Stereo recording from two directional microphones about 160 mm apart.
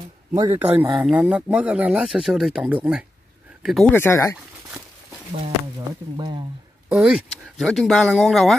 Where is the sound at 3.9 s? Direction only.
15° left (ahead or behind).